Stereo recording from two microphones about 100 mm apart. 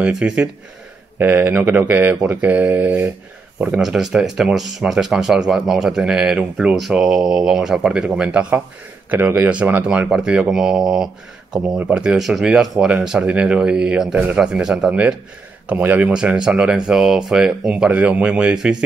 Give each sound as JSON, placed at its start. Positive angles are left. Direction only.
{"t": 0.0, "sound": "speech", "side_deg": -10}